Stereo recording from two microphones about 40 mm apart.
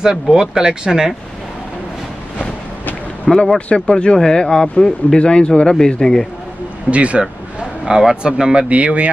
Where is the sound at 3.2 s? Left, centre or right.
Centre.